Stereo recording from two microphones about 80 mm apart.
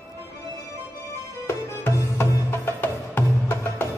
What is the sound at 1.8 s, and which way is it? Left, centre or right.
Music, left.